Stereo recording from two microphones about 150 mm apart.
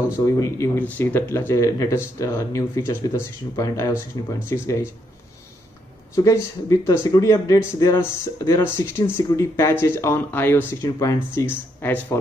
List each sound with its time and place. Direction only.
0.4 s speech: 15° left (ahead or behind)
6.1 s speech: 20° left (ahead or behind)